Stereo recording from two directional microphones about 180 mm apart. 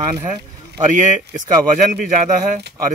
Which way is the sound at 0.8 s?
45° right (ahead or behind).